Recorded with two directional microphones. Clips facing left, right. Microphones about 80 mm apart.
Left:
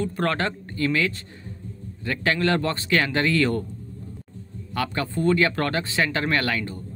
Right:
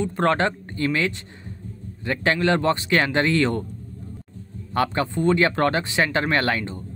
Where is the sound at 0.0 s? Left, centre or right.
Right.